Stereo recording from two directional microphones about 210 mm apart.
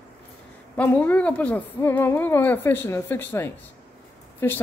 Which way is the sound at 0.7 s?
10° left (ahead or behind).